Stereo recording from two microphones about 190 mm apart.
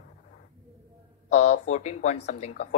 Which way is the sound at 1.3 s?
40° left (ahead or behind).